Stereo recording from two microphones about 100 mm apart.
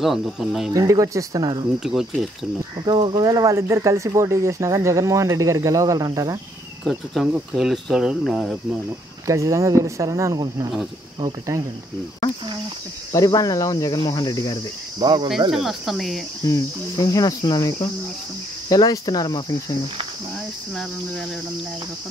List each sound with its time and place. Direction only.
0.0 s speech: centre (ahead or behind)
0.7 s speech: 35° right (ahead or behind)
1.8 s speech: 5° right (ahead or behind)
2.8 s speech: 50° right (ahead or behind)
3.5 s speech: 30° right (ahead or behind)
6.8 s speech: 5° left (ahead or behind)
9.2 s speech: 30° right (ahead or behind)
10.3 s speech: 40° right (ahead or behind)
13.1 s cricket: 35° left (ahead or behind)
15.0 s speech: 45° right (ahead or behind)
15.5 s speech: 5° right (ahead or behind)
16.4 s cricket: 35° left (ahead or behind)